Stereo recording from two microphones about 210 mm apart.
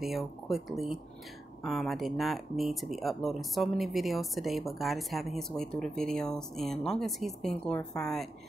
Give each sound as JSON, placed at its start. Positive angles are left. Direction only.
{"t": 0.0, "sound": "speech", "side_deg": 0}